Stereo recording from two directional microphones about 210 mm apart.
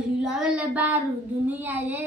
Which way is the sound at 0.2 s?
5° right (ahead or behind).